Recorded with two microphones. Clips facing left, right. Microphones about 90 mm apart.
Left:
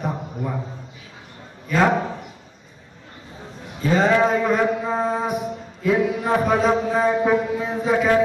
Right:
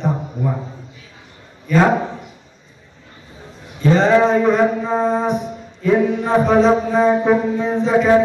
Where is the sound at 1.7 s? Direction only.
Centre (ahead or behind).